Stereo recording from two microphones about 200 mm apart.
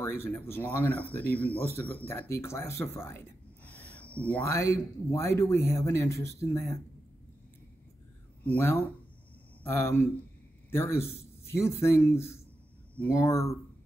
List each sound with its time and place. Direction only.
0.0 s speech: 10° left (ahead or behind)
8.5 s a man's voice: 10° left (ahead or behind)